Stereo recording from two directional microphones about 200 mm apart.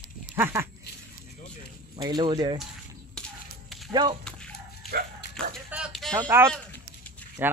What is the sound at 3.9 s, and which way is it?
Speech, 20° right (ahead or behind).